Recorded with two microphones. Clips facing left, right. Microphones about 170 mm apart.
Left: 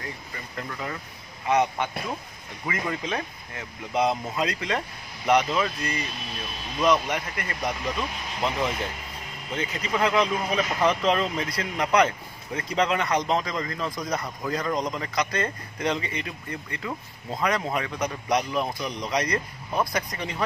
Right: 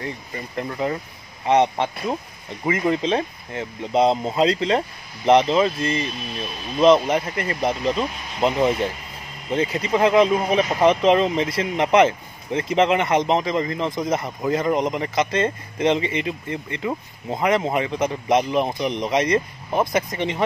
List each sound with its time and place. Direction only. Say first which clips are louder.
0.6 s speech: right 9 dB; 30° right (ahead or behind)